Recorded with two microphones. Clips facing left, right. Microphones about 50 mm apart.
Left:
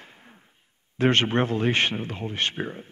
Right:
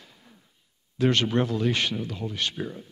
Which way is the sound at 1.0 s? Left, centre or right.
Left.